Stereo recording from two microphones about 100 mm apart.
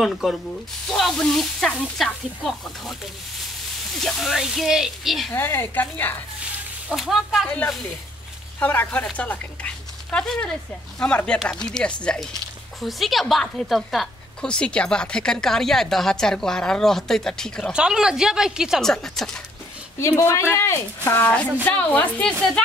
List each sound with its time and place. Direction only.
0.0 s a woman's voice: centre (ahead or behind)
4.0 s a woman's voice: centre (ahead or behind)
5.3 s speech: 20° left (ahead or behind)
6.9 s a woman's voice: centre (ahead or behind)
7.4 s a woman's voice: 10° left (ahead or behind)
17.7 s a woman's voice: 5° right (ahead or behind)
18.8 s a woman's voice: 5° left (ahead or behind)
20.0 s speech: 30° left (ahead or behind); by 22.5 s 10° left (ahead or behind)